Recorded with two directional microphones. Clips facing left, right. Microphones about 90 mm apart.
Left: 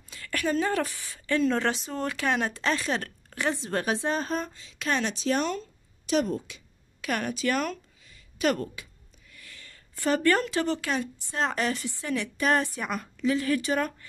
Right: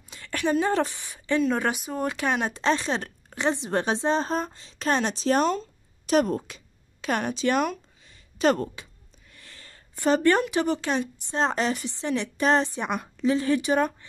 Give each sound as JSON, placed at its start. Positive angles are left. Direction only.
{"t": 0.1, "sound": "a woman's voice", "side_deg": -25}
{"t": 6.0, "sound": "a woman's voice", "side_deg": -45}
{"t": 7.0, "sound": "speech", "side_deg": -25}
{"t": 8.1, "sound": "a sound", "side_deg": -30}
{"t": 9.9, "sound": "speech", "side_deg": -20}